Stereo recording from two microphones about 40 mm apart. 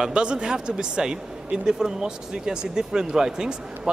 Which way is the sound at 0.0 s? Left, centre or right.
Right.